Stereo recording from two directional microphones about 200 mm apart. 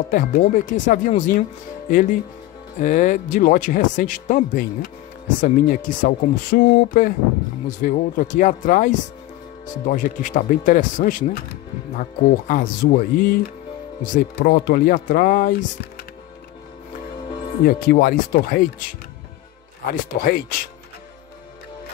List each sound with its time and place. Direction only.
0.1 s speech: 40° left (ahead or behind)
17.6 s speech: 45° left (ahead or behind)
19.9 s speech: 50° left (ahead or behind)